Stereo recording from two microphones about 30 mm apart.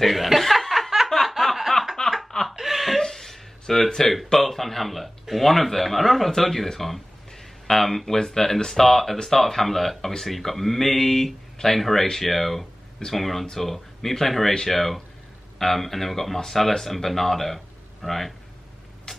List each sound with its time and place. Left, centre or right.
0.0 s chuckle: centre
1.0 s a sound: centre
1.3 s snicker: centre
2.0 s snicker: left
2.5 s laughter: centre
3.0 s a sound: centre
4.3 s speech: centre
11.5 s speech: centre
11.8 s speech: centre